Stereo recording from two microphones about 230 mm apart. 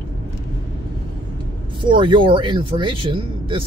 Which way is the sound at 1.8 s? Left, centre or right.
Right.